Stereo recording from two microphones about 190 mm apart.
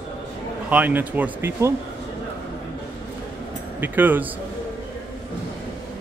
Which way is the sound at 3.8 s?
10° right (ahead or behind).